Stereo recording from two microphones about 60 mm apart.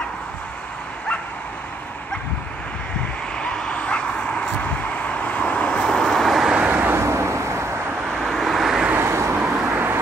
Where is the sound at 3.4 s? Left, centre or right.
Centre.